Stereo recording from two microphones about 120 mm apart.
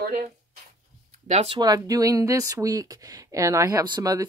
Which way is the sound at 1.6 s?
30° right (ahead or behind).